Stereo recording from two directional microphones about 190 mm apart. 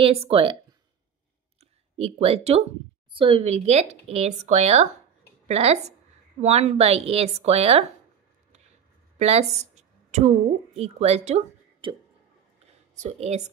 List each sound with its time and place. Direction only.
0.0 s speech: 30° right (ahead or behind)
2.0 s speech: 30° right (ahead or behind)
9.2 s a woman's voice: 35° right (ahead or behind)
12.9 s speech: 35° right (ahead or behind)